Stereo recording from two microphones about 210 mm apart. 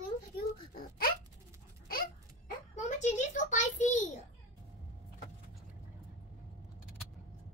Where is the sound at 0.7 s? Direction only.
45° left (ahead or behind).